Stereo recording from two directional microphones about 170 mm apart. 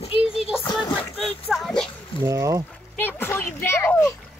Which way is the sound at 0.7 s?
25° left (ahead or behind).